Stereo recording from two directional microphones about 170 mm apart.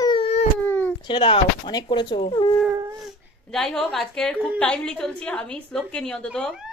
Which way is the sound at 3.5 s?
5° left (ahead or behind).